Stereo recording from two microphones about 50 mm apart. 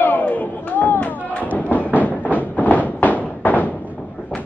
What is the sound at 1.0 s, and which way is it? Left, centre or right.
Thump, left.